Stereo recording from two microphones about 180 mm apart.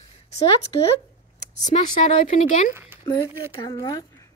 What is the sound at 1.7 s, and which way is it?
Speech, 40° left (ahead or behind).